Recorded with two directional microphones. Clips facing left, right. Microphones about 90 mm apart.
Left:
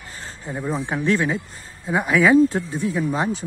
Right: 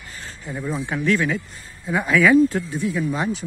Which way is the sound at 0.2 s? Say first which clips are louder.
Left 1 dB; 30° left (ahead or behind).